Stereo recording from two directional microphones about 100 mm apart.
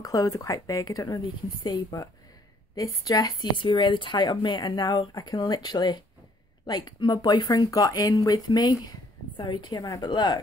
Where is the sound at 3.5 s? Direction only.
55° left (ahead or behind).